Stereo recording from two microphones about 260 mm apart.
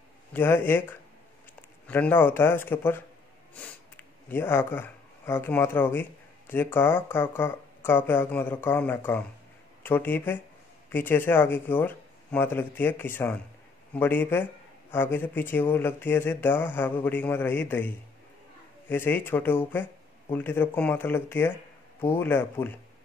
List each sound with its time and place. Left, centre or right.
0.3 s a man's voice: centre
1.9 s a man's voice: centre